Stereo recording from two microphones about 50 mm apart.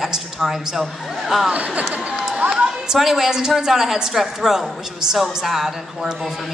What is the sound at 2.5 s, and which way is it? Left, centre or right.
A woman's voice, centre.